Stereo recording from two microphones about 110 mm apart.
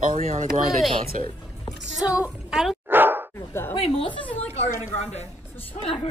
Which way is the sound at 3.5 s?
20° left (ahead or behind).